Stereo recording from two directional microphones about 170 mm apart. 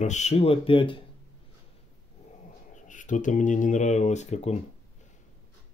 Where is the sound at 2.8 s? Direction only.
50° left (ahead or behind).